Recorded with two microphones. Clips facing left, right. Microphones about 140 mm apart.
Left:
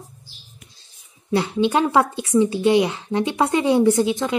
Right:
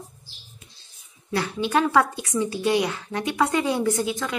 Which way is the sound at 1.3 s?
20° left (ahead or behind).